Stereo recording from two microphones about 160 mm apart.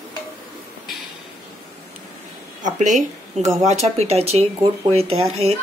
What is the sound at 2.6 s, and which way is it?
Speech, 50° right (ahead or behind).